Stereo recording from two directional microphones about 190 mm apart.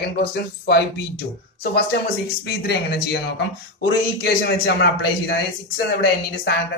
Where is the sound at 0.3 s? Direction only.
60° left (ahead or behind).